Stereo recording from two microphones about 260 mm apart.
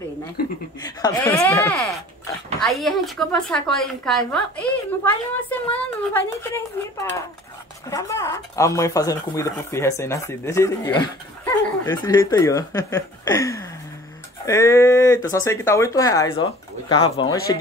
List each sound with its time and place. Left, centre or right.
0.7 s a woman's voice: centre